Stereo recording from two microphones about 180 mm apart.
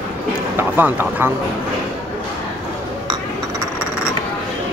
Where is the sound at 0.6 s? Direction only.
10° right (ahead or behind).